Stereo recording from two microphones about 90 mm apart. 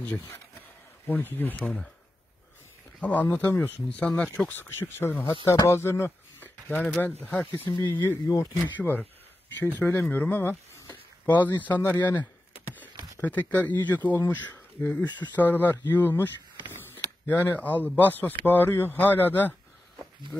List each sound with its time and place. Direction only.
0.0 s speech: 25° left (ahead or behind)
3.0 s speech: 20° left (ahead or behind)
5.7 s a sound: 25° left (ahead or behind)
6.8 s speech: 15° left (ahead or behind)
17.3 s speech: 25° left (ahead or behind)